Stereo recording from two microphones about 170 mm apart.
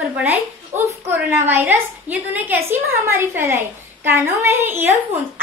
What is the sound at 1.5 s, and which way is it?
A woman's voice, 15° right (ahead or behind).